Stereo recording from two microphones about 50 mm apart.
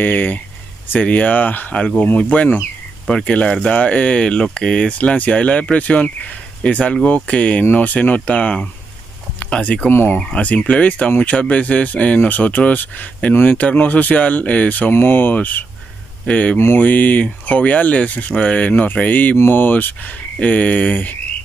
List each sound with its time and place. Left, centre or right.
0.0 s speech: left; by 4.9 s centre
4.9 s speech: left
7.6 s speech: left
9.6 s speech: left
9.8 s speech: left
10.3 s speech: left
11.1 s speech: left
11.3 s speech: left
14.9 s speech: left
15.3 s speech: left